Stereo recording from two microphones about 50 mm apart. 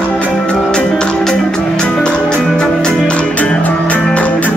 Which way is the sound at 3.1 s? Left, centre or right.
Left.